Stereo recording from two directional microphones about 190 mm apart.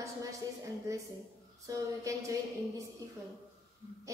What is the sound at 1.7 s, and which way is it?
Speech, 15° right (ahead or behind).